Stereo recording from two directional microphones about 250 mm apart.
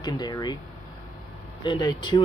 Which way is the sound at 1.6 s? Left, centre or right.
Centre.